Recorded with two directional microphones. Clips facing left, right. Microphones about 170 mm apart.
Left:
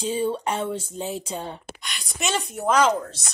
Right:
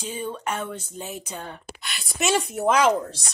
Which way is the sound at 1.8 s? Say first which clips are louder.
Right 6 dB; 5° right (ahead or behind).